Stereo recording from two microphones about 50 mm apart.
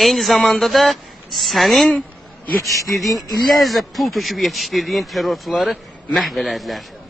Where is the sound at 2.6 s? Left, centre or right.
Left.